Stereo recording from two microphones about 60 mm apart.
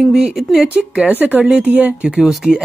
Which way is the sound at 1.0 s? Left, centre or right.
Right.